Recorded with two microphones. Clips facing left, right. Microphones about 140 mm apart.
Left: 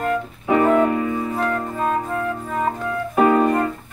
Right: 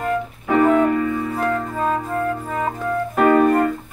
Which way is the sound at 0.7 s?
15° left (ahead or behind).